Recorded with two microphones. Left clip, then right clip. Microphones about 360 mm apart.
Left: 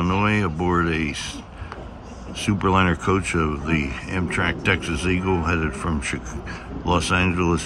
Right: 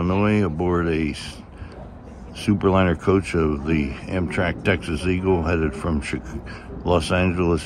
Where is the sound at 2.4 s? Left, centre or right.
Centre.